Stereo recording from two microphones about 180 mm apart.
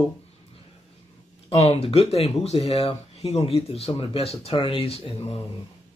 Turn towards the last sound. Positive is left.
turn(degrees=35)  # may be behind; listen again after turning